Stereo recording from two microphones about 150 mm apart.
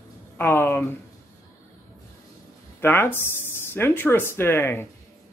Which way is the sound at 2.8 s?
15° left (ahead or behind).